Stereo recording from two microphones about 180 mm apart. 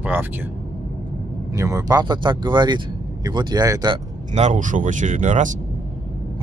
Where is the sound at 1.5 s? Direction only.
20° right (ahead or behind).